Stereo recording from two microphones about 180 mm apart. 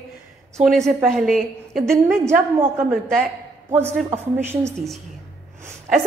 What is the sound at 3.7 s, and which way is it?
A woman's voice, 15° right (ahead or behind).